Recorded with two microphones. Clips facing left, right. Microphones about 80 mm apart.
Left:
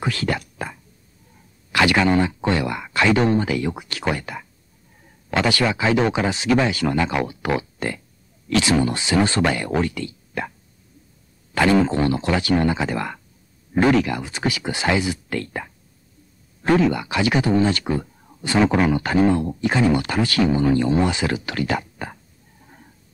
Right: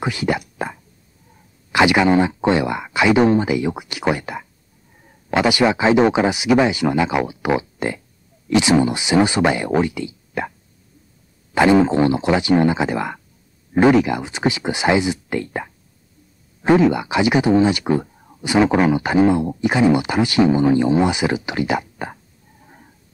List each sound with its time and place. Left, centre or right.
0.0 s speech: centre
11.5 s speech: centre